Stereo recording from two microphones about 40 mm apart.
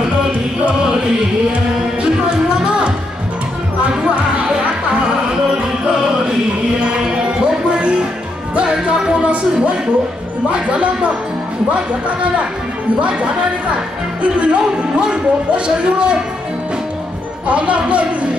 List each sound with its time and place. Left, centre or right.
2.2 s music: right
3.8 s music: right
8.5 s music: right
10.5 s speech: right
14.2 s speech: right
17.5 s speech: right